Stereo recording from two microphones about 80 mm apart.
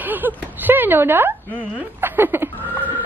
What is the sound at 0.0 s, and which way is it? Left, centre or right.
Speech, right.